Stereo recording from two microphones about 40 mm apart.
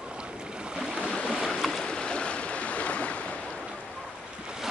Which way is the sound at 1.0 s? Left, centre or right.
Left.